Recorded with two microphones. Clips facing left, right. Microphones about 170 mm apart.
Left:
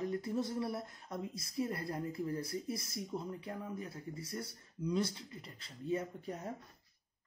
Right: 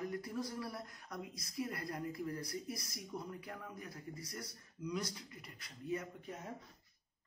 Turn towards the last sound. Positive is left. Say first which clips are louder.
# left 6 dB
turn(degrees=35)  # may be behind; listen again after turning